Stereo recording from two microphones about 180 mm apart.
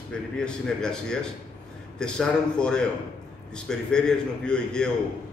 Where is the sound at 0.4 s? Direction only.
5° left (ahead or behind).